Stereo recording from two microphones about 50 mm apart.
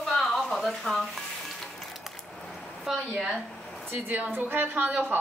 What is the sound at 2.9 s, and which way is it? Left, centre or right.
Speech, centre.